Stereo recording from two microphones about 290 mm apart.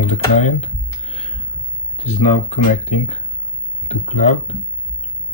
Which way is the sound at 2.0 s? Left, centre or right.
Left.